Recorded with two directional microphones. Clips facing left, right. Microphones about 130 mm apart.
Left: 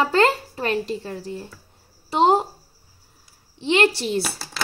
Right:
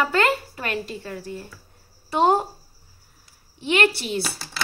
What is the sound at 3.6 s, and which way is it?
Speech, 25° left (ahead or behind).